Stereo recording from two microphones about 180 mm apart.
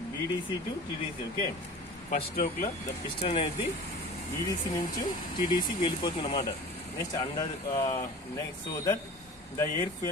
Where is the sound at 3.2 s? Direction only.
35° left (ahead or behind).